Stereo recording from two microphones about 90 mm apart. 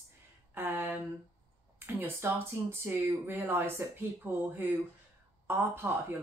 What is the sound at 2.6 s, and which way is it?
Speech, 45° right (ahead or behind).